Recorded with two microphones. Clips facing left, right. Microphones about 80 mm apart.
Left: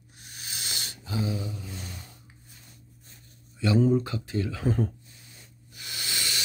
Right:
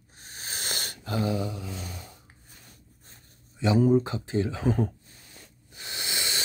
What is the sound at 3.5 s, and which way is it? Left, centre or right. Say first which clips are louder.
Speech: right 1 dB; right.